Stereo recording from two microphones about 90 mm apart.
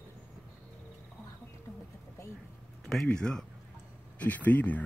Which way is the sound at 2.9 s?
5° left (ahead or behind).